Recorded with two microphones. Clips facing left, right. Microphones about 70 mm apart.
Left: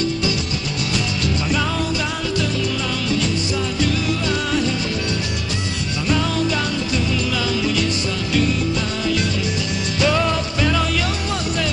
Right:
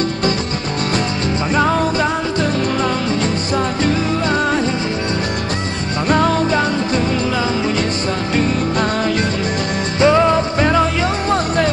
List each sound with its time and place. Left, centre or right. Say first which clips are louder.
6.0 s music: right 6 dB; right
9.9 s music: right 7 dB; right